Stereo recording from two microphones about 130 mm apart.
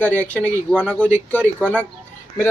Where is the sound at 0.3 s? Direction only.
20° right (ahead or behind).